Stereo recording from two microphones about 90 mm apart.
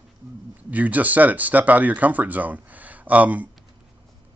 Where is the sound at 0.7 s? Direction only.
20° right (ahead or behind).